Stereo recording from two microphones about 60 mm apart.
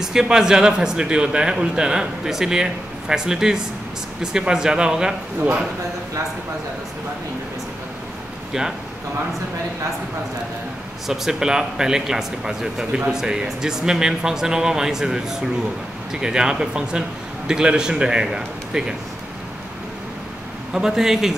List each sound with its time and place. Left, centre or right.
0.0 s speech: centre
11.1 s speech: centre
20.7 s speech: centre